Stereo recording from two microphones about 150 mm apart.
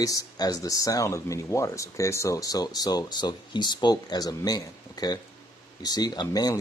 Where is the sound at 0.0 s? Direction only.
25° left (ahead or behind).